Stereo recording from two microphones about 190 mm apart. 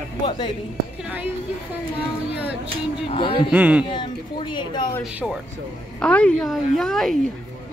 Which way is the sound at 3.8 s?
25° left (ahead or behind).